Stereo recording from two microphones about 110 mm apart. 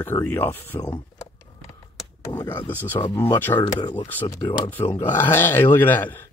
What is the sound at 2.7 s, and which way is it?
Speech, 20° left (ahead or behind).